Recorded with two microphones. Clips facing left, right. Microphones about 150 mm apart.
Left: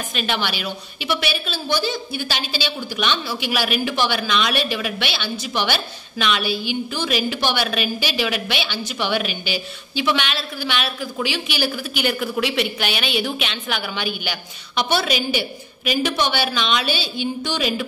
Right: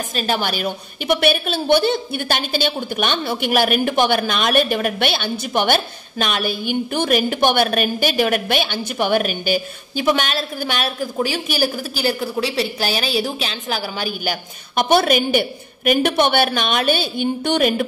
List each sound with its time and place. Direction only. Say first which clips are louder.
0.1 s a woman's voice: right 3 dB; 40° right (ahead or behind)